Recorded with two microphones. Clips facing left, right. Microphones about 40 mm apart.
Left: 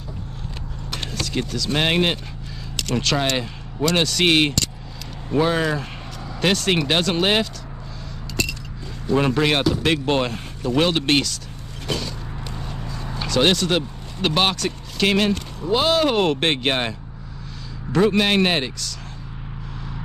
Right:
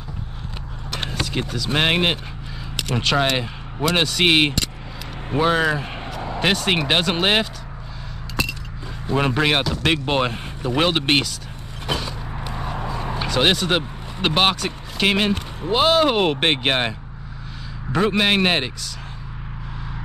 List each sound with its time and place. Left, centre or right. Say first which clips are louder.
0.9 s speech: right 1 dB; centre
8.4 s a sound: right 1 dB; centre
9.1 s speech: left 1 dB; centre
11.9 s vehicle: right 1 dB; centre
13.3 s speech: left 1 dB; centre
17.9 s speech: left 1 dB; centre